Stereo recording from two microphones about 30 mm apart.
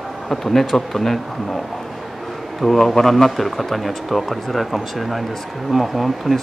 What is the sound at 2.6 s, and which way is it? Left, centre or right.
Speech, centre.